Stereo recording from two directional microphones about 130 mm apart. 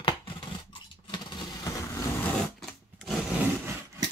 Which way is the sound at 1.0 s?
35° left (ahead or behind).